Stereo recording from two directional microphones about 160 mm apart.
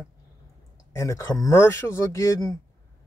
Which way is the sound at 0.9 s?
20° left (ahead or behind).